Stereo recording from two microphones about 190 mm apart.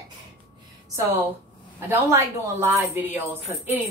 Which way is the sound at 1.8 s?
10° right (ahead or behind).